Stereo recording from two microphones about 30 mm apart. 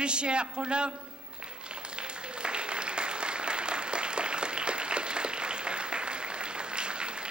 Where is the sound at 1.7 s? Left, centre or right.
Right.